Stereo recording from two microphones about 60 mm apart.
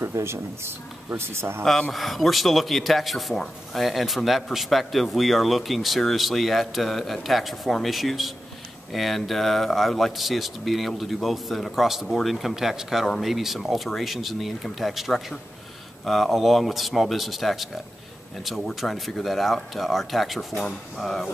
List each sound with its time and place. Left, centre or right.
0.0 s speech: right
1.6 s a man's voice: centre